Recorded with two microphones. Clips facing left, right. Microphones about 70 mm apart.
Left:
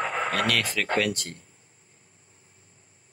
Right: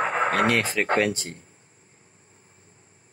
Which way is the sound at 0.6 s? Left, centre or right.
Right.